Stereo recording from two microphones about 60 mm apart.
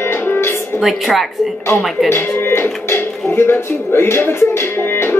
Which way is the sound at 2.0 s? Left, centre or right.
Left.